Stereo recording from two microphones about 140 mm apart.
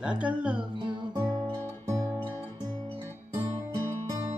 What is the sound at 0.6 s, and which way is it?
Music, 35° right (ahead or behind).